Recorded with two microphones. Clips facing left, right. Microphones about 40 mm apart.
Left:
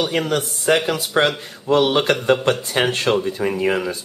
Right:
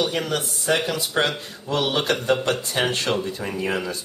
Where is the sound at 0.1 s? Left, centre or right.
Left.